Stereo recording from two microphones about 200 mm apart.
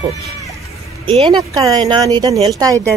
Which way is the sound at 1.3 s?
20° right (ahead or behind).